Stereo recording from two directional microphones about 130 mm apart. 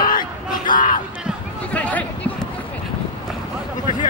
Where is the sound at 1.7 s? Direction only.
10° left (ahead or behind).